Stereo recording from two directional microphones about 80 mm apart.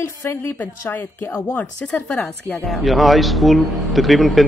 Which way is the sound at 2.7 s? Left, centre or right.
Centre.